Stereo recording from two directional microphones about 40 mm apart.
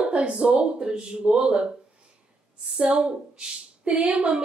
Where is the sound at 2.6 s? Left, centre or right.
Centre.